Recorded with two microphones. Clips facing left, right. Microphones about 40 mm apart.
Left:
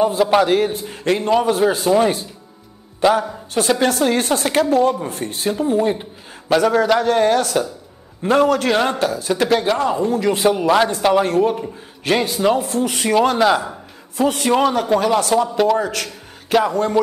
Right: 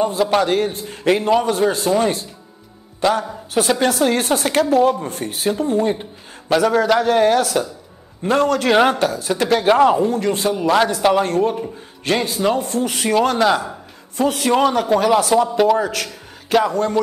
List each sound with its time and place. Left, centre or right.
0.0 s a man's voice: centre
1.0 s a man's voice: centre
1.3 s a man's voice: centre
9.7 s speech: right
10.3 s speech: left
10.6 s a man's voice: centre